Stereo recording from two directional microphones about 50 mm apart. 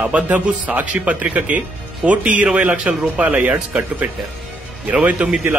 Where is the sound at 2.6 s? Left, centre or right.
Right.